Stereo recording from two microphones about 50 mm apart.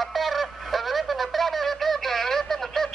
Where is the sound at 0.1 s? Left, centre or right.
Centre.